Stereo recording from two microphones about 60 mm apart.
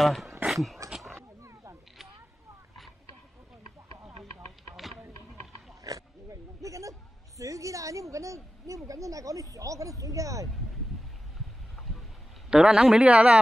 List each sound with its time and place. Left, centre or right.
0.0 s speech: centre
0.5 s dog: centre
1.4 s a sound: right
5.9 s speech: right
11.7 s a sound: centre
12.4 s speech: centre